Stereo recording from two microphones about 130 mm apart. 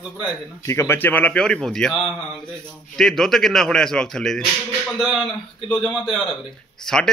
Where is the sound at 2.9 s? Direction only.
5° left (ahead or behind).